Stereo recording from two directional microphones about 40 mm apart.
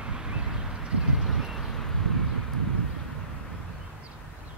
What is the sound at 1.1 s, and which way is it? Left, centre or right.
Boat, centre.